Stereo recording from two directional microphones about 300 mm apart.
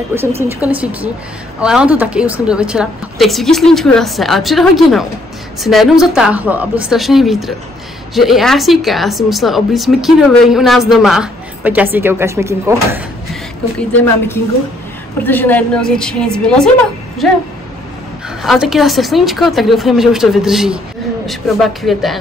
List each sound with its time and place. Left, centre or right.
0.6 s speech: centre
15.2 s speech: centre
18.4 s speech: centre